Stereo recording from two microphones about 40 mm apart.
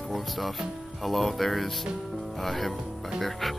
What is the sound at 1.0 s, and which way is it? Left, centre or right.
Speech, centre.